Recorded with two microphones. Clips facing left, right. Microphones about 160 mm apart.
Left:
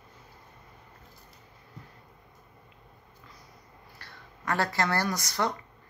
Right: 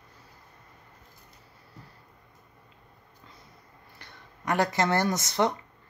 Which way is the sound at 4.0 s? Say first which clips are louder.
Right 1 dB; 20° right (ahead or behind).